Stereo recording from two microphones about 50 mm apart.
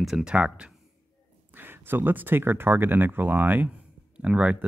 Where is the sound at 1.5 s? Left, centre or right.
Right.